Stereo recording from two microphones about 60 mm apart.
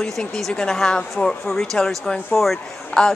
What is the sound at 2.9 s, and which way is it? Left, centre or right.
Speech, left.